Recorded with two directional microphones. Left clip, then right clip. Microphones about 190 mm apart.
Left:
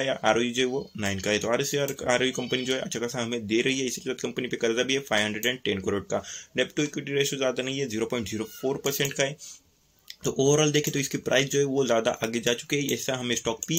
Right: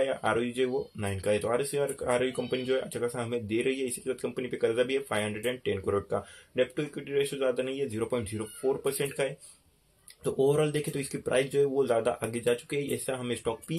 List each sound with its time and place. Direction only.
0.0 s speech: 30° left (ahead or behind)